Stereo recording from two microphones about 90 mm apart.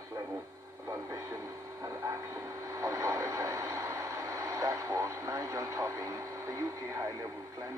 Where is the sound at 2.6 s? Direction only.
35° right (ahead or behind).